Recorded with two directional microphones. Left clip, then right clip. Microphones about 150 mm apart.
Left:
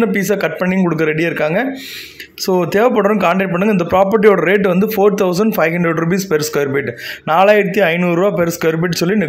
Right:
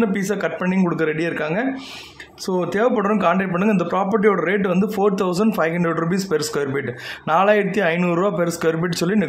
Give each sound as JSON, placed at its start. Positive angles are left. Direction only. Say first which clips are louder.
{"t": 0.0, "sound": "a man's voice", "louder": "left 6 dB", "side_deg": 20}